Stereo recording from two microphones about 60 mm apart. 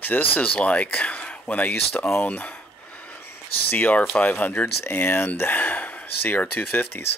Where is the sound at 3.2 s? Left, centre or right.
Left.